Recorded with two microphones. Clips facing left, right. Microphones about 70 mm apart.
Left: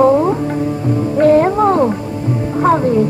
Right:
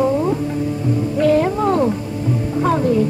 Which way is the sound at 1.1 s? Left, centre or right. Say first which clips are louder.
Left 6 dB; left.